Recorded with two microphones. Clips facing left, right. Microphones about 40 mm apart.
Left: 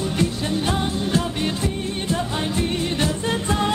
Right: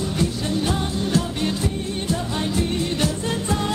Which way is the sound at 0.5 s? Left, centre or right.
Left.